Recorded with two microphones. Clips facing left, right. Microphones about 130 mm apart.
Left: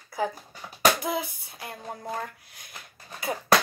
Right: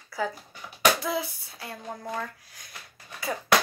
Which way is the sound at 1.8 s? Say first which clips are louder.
Even; 35° left (ahead or behind).